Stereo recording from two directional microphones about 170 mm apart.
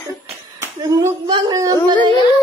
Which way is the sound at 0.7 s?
20° right (ahead or behind).